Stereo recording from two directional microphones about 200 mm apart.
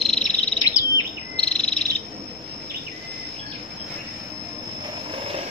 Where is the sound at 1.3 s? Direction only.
5° left (ahead or behind).